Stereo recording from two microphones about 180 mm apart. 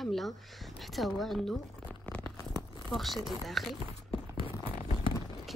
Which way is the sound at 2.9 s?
Centre (ahead or behind).